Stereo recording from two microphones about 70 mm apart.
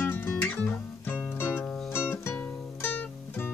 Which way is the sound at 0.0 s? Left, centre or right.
Left.